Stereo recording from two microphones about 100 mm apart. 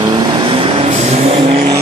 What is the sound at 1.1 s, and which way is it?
Vehicle, 80° right.